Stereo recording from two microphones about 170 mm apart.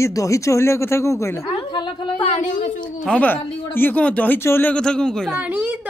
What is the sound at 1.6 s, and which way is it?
Speech, 30° left (ahead or behind).